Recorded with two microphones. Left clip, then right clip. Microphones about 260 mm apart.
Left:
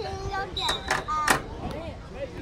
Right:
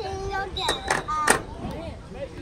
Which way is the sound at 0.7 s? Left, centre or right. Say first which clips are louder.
Right 2 dB; right.